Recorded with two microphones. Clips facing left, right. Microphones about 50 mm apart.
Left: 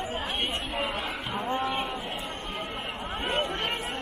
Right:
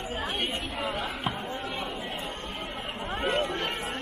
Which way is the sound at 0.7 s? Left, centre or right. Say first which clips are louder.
Left 1 dB; left.